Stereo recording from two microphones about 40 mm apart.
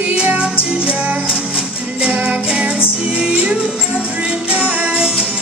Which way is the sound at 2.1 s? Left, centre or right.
Right.